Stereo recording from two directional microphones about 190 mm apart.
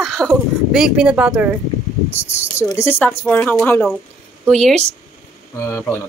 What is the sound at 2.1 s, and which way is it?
A woman's voice, 10° left (ahead or behind).